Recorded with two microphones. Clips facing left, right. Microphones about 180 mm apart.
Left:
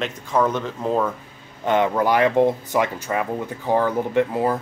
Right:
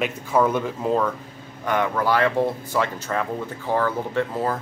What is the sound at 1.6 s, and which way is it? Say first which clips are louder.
Speech: left 3 dB; 20° left (ahead or behind).